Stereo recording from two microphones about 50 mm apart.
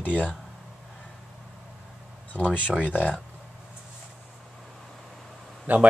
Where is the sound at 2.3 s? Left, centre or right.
Left.